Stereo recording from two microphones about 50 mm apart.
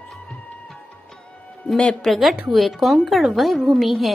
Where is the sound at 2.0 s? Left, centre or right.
Centre.